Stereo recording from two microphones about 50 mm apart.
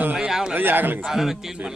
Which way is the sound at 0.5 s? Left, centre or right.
Right.